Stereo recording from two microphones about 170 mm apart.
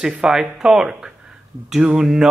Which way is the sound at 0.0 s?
5° right (ahead or behind).